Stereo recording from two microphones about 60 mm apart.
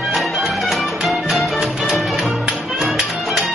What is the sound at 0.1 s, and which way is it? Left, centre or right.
Music, centre.